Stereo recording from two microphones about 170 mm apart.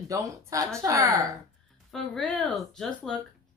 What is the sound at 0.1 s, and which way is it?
A woman's voice, 20° right (ahead or behind).